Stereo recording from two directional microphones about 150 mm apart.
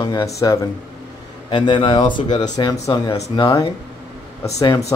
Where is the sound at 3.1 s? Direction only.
45° left (ahead or behind).